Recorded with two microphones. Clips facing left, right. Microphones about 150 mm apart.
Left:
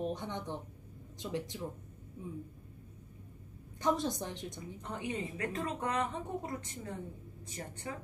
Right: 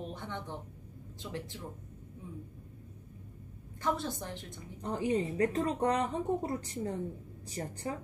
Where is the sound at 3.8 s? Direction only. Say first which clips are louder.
Left 2 dB; 15° left (ahead or behind).